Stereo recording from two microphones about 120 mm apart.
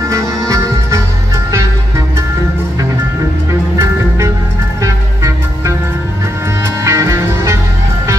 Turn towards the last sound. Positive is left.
turn(degrees=-25)  # may be behind; listen again after turning